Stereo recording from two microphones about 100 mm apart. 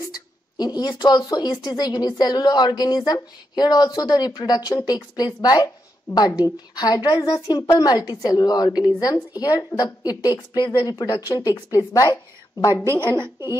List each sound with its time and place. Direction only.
0.6 s speech: 45° left (ahead or behind)
7.2 s a woman's voice: 35° left (ahead or behind)
11.3 s speech: 45° left (ahead or behind)
13.1 s speech: 55° left (ahead or behind)